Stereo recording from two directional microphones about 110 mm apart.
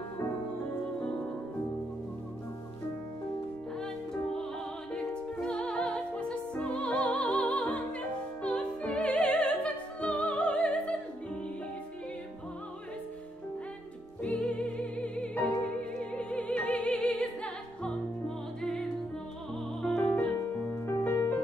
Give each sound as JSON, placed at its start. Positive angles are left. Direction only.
{"t": 3.8, "sound": "music", "side_deg": 5}
{"t": 14.2, "sound": "music", "side_deg": 5}
{"t": 20.3, "sound": "music", "side_deg": 25}